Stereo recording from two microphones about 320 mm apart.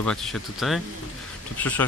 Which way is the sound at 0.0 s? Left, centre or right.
Centre.